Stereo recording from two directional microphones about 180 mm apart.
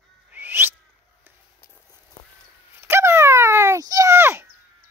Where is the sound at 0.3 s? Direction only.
10° right (ahead or behind).